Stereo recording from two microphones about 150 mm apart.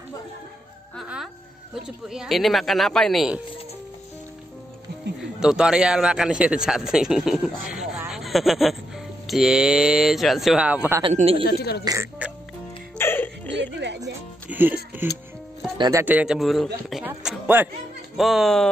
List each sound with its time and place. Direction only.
1.0 s speech: 5° right (ahead or behind)
5.4 s speech: 5° right (ahead or behind)
11.1 s speech: 40° right (ahead or behind)
11.4 s speech: 90° left
11.8 s speech: 20° right (ahead or behind)
12.9 s music: 15° left (ahead or behind)
14.5 s speech: 10° right (ahead or behind)